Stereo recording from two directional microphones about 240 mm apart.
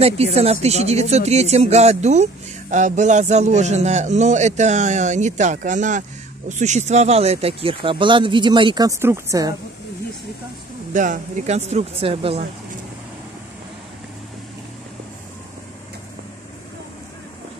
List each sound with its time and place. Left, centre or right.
0.0 s a man's voice: right
10.9 s a man's voice: right